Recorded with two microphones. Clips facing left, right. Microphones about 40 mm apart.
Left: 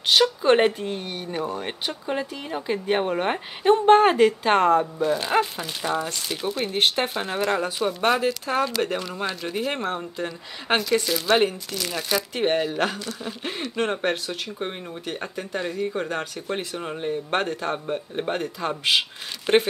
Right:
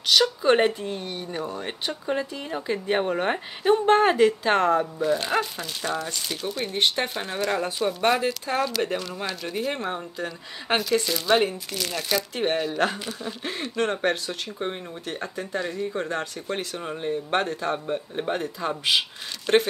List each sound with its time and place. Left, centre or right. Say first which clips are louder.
0.2 s speech: left 3 dB; centre
0.8 s speech: left 1 dB; left
4.6 s speech: left 2 dB; centre
10.8 s speech: left 1 dB; centre; by 14.1 s left
16.4 s speech: left 1 dB; centre
17.1 s speech: even; left
17.8 s speech: even; centre